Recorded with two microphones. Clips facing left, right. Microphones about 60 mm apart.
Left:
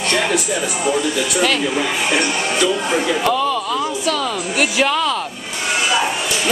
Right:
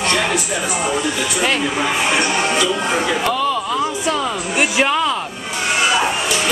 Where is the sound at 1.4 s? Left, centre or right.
Right.